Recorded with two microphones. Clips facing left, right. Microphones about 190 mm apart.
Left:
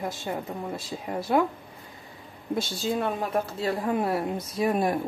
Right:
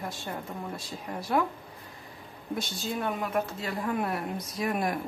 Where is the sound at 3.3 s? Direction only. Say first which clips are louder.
Left 4 dB; 30° left (ahead or behind).